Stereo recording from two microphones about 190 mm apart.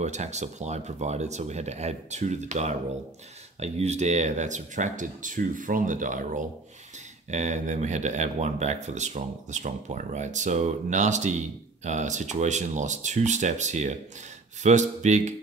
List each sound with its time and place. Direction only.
0.0 s speech: 35° right (ahead or behind)